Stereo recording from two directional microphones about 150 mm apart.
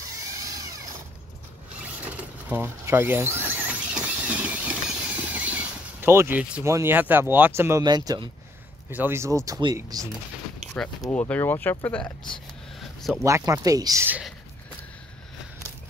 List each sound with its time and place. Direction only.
2.1 s a sound: 15° right (ahead or behind)
7.8 s speech: 25° right (ahead or behind)
8.9 s speech: 15° right (ahead or behind)
11.1 s speech: 10° left (ahead or behind)
13.2 s speech: 20° right (ahead or behind)